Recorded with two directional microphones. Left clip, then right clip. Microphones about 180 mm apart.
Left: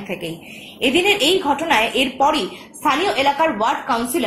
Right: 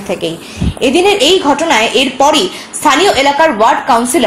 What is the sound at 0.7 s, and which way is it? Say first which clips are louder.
A woman's voice: right 7 dB; 30° right (ahead or behind).